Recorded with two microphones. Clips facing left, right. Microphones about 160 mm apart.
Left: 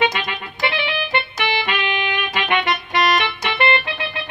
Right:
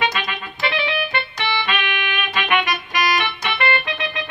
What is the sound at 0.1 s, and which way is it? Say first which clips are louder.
Music: even; 25° left (ahead or behind).